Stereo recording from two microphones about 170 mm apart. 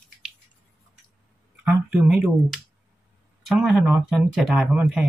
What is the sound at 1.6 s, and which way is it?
Speech, 5° right (ahead or behind).